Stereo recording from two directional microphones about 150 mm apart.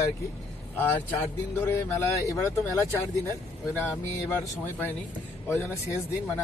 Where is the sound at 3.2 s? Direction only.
15° left (ahead or behind).